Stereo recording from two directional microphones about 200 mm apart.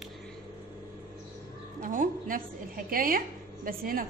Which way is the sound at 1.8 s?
40° right (ahead or behind).